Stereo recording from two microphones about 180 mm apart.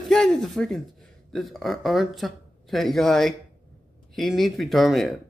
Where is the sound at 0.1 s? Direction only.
Centre (ahead or behind).